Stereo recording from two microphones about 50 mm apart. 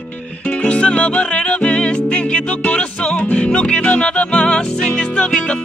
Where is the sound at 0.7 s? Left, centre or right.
Left.